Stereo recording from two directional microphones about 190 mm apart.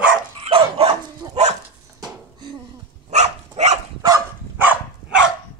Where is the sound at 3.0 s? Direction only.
35° right (ahead or behind).